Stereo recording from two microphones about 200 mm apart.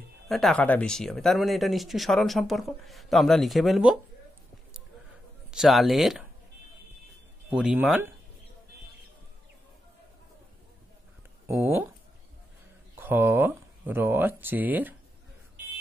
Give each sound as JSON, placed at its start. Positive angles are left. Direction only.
{"t": 0.3, "sound": "speech", "side_deg": 0}
{"t": 5.5, "sound": "speech", "side_deg": 0}
{"t": 7.4, "sound": "speech", "side_deg": -10}
{"t": 11.4, "sound": "speech", "side_deg": -15}
{"t": 13.0, "sound": "speech", "side_deg": -10}